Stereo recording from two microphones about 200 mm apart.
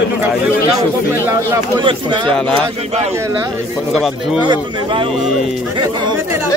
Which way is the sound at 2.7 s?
30° right (ahead or behind).